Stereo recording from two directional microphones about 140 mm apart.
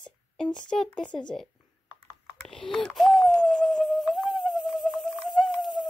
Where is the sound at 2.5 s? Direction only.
5° left (ahead or behind).